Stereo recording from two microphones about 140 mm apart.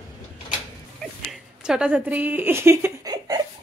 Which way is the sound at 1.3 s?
5° right (ahead or behind).